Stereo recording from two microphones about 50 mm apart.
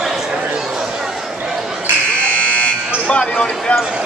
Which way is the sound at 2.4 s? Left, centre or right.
Left.